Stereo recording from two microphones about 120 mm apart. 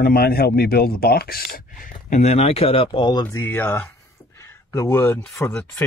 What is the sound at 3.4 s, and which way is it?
Speech, 15° left (ahead or behind).